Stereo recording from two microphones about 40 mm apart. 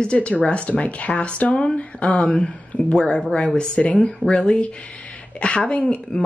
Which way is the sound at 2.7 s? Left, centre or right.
Left.